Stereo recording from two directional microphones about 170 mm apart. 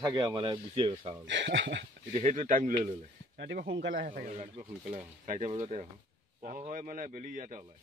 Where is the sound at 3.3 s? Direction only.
65° right (ahead or behind).